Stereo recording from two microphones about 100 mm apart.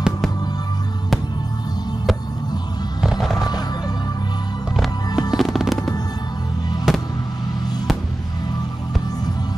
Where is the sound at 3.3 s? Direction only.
40° left (ahead or behind).